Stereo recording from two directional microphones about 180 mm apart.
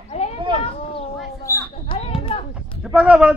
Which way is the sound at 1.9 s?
30° left (ahead or behind).